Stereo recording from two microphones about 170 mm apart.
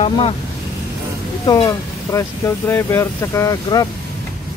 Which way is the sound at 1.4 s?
20° left (ahead or behind).